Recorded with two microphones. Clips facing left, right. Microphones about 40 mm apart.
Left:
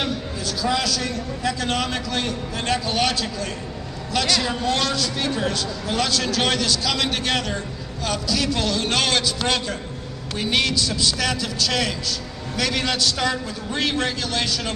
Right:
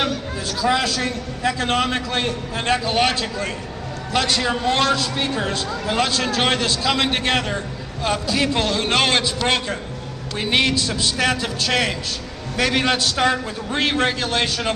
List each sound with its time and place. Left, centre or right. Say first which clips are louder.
0.5 s a man's voice: right 3 dB; right
10.3 s a man's voice: right 2 dB; right